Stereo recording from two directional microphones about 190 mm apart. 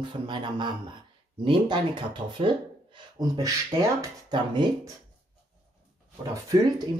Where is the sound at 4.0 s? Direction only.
25° right (ahead or behind).